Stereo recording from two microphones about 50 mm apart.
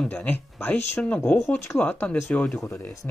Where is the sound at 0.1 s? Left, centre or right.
Left.